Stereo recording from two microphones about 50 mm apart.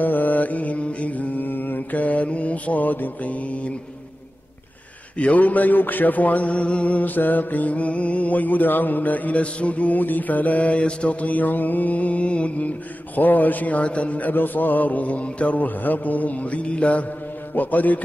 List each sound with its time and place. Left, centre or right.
0.0 s mantra: left
5.2 s music: left
7.2 s music: left
14.3 s music: left
17.6 s music: left